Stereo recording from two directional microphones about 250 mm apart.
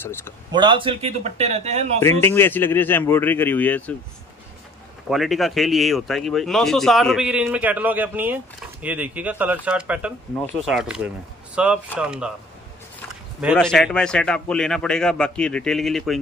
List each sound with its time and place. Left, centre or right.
0.0 s speech: centre
0.5 s speech: centre
2.2 s speech: centre
5.1 s speech: centre